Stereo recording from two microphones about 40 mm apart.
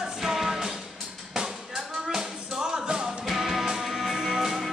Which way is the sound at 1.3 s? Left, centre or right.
Centre.